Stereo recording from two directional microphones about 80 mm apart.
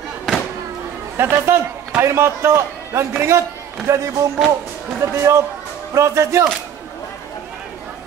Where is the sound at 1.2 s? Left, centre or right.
Right.